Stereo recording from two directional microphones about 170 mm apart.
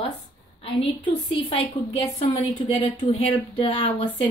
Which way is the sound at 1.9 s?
35° left (ahead or behind).